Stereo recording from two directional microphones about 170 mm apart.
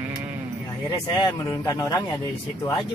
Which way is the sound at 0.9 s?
20° left (ahead or behind).